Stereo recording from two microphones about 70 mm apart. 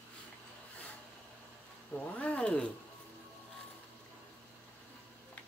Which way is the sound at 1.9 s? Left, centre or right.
Centre.